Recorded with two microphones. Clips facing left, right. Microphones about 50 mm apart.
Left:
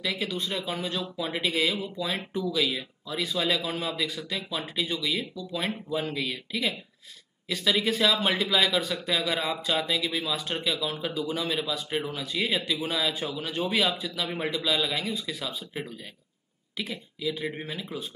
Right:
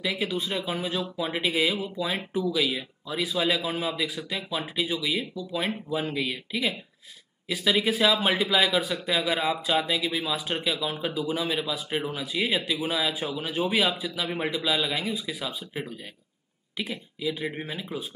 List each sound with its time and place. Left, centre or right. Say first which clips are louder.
0.0 s speech: right 2 dB; centre